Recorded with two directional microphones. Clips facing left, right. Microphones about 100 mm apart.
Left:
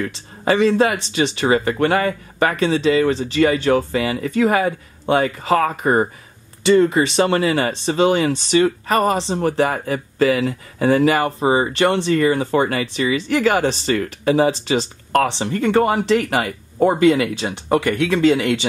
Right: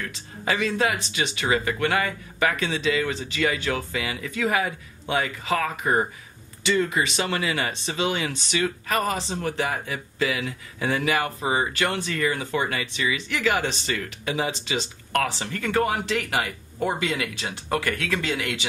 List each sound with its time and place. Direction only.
0.5 s speech: 35° left (ahead or behind)
15.2 s speech: 25° left (ahead or behind); by 17.5 s 40° left (ahead or behind)
17.5 s speech: 25° left (ahead or behind)
18.4 s speech: 35° left (ahead or behind)